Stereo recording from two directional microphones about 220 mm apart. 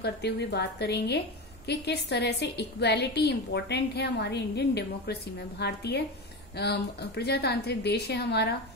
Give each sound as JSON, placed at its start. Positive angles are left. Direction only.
{"t": 0.0, "sound": "a woman's voice", "side_deg": 50}